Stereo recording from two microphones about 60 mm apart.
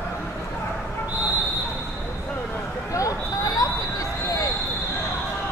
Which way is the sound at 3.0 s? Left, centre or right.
Left.